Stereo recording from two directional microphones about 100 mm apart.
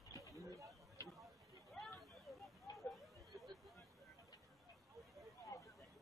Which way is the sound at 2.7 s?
Centre (ahead or behind).